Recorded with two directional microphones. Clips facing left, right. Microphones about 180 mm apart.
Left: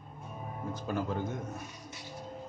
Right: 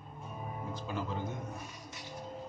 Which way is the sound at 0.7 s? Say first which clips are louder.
Left 5 dB; 50° left (ahead or behind).